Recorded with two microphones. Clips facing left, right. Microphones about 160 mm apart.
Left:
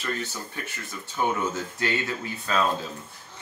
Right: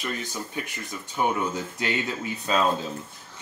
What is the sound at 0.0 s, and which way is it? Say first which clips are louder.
Speech: even; 15° right (ahead or behind).